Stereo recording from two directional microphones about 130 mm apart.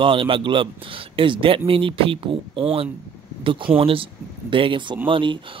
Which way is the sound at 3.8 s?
45° right (ahead or behind).